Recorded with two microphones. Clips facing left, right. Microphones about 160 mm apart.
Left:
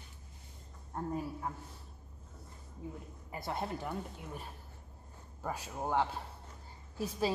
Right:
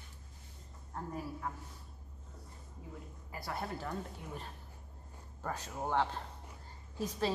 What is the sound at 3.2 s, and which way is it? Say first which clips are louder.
A woman's voice: left 3 dB; 25° left (ahead or behind).